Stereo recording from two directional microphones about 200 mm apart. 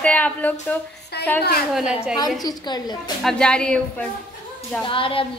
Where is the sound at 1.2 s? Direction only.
55° left (ahead or behind).